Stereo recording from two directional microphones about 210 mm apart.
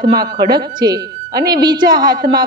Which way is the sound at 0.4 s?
50° right (ahead or behind).